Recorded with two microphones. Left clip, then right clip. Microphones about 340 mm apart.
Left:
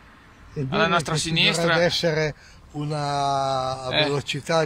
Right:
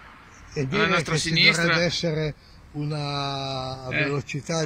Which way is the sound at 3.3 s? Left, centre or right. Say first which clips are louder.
Left 7 dB; left.